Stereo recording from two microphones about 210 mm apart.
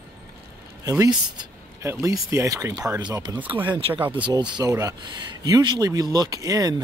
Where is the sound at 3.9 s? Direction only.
10° right (ahead or behind).